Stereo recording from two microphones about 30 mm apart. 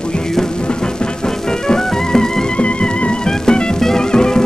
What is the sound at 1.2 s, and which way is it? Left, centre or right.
Music, centre.